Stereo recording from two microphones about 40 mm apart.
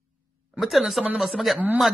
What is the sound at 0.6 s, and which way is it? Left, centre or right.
Speech, centre.